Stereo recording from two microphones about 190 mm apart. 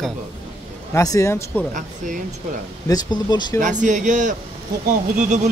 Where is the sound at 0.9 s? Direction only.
15° left (ahead or behind).